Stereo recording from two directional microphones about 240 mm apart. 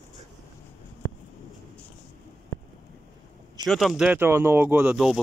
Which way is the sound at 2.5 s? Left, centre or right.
Centre.